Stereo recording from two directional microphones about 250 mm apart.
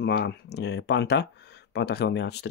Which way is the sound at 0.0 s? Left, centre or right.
Left.